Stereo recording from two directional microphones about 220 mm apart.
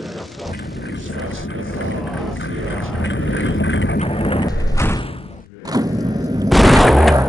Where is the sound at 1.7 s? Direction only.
55° left (ahead or behind).